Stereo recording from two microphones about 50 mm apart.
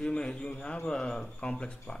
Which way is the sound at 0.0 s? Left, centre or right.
Centre.